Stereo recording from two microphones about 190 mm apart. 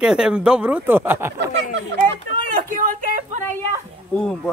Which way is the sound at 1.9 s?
65° right (ahead or behind).